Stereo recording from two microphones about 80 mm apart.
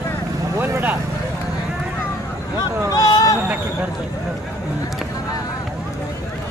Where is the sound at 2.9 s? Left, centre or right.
Left.